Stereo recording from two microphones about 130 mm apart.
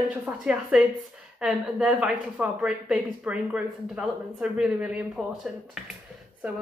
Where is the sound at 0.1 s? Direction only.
10° right (ahead or behind).